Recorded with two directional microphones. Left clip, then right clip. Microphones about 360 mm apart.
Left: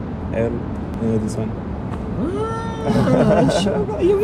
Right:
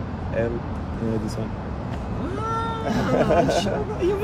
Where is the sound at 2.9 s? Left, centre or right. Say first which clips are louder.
Left 5 dB; centre.